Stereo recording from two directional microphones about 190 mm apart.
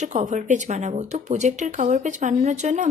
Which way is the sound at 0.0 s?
40° right (ahead or behind).